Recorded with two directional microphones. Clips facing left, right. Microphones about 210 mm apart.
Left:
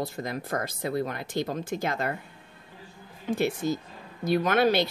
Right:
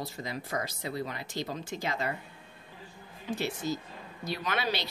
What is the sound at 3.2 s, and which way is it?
Speech, 50° left (ahead or behind).